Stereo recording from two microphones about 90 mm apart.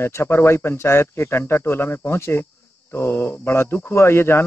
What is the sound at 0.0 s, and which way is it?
A man's voice, 30° left (ahead or behind).